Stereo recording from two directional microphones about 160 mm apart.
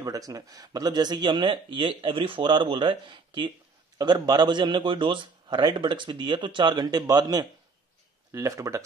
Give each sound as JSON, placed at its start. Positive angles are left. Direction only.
{"t": 0.0, "sound": "a man's voice", "side_deg": -20}